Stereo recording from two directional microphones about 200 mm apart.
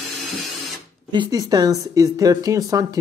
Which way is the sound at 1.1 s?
20° right (ahead or behind).